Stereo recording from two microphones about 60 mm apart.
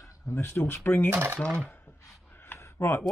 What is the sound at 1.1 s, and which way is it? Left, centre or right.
Coin, right.